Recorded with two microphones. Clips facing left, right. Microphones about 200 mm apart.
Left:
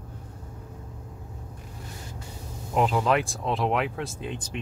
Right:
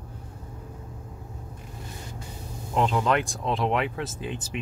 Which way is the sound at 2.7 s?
5° left (ahead or behind).